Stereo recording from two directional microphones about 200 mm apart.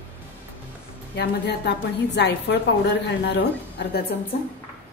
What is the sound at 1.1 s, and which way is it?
A woman's voice, 55° left (ahead or behind).